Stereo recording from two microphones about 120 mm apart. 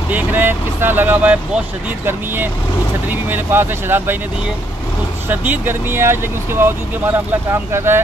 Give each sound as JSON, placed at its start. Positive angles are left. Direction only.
{"t": 0.1, "sound": "speech", "side_deg": -15}
{"t": 5.3, "sound": "speech", "side_deg": -15}